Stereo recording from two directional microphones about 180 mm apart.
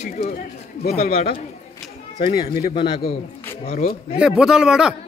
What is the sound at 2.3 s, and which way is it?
Speech, 60° left (ahead or behind).